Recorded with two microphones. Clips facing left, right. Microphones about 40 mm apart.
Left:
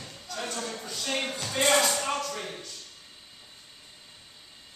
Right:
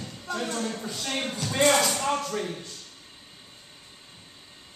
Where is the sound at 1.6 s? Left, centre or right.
Centre.